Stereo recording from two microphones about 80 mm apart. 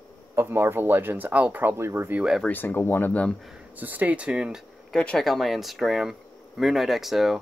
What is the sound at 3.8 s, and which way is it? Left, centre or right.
Speech, right.